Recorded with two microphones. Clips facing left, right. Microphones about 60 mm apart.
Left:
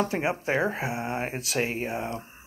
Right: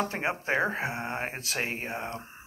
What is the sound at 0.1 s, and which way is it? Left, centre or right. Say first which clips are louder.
Speech: left 2 dB; right.